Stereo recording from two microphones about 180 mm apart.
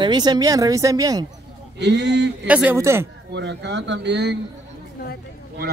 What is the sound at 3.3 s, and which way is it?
Speech, 80° right.